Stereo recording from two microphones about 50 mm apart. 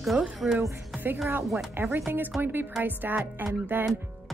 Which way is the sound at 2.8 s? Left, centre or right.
Right.